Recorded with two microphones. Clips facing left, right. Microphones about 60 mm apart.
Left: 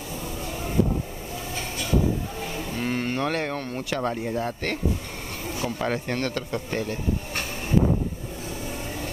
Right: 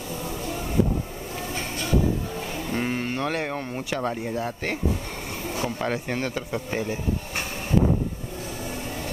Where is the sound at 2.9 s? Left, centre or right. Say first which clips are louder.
Left 1 dB; centre.